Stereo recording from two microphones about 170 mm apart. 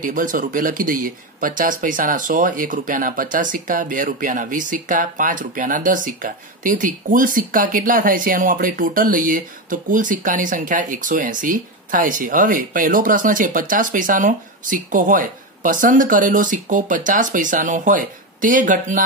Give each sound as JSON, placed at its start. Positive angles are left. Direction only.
{"t": 0.0, "sound": "speech", "side_deg": -50}